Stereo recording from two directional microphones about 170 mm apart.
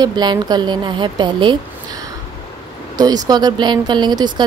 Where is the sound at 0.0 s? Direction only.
25° right (ahead or behind).